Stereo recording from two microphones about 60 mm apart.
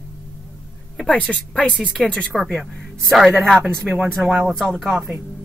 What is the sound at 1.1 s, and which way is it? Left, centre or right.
A woman's voice, centre.